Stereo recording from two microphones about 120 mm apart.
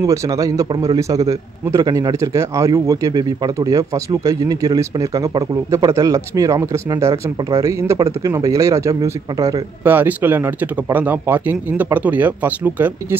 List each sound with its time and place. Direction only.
0.0 s a man's voice: 25° right (ahead or behind)
9.8 s speech: 15° right (ahead or behind)